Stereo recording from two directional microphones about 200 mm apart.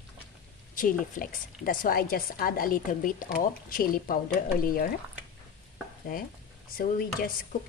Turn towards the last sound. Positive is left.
turn(degrees=45)  # may be behind; listen again after turning